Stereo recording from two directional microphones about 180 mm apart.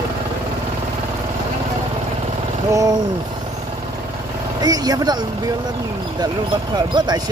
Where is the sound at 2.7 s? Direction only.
20° right (ahead or behind).